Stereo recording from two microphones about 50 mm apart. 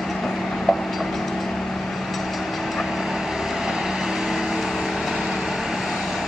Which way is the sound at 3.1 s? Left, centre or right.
Centre.